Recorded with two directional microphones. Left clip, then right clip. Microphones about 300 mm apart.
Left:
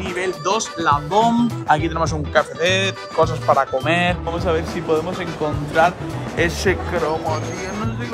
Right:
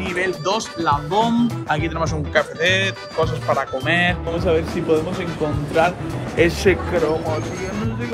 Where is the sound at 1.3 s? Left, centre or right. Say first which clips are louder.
Left 3 dB; centre.